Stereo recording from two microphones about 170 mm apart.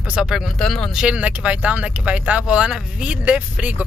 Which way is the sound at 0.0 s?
5° right (ahead or behind).